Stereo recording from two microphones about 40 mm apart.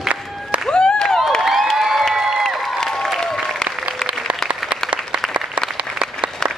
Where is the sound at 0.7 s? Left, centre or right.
Left.